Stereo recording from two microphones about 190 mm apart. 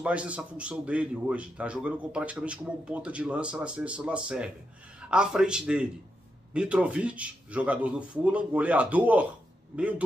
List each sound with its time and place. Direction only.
0.0 s a man's voice: 5° right (ahead or behind)